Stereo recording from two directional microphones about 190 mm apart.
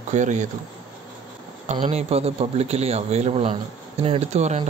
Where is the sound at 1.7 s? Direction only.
35° right (ahead or behind).